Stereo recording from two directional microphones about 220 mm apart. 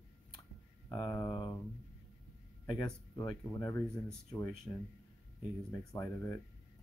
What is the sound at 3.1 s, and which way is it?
Speech, 15° left (ahead or behind).